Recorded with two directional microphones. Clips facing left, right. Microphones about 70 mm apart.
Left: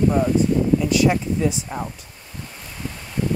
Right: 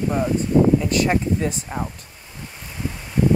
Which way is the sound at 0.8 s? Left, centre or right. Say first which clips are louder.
Left 1 dB; right.